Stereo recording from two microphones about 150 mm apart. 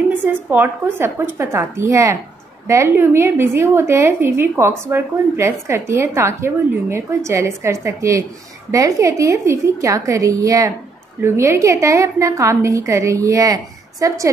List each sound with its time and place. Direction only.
0.1 s a woman's voice: 15° right (ahead or behind)